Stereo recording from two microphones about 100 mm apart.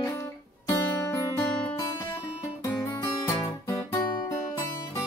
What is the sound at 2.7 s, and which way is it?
Guitar, 30° left (ahead or behind).